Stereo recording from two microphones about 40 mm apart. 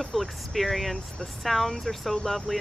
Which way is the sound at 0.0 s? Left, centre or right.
Centre.